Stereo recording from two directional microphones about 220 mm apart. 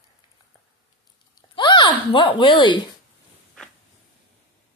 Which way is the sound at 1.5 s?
20° left (ahead or behind).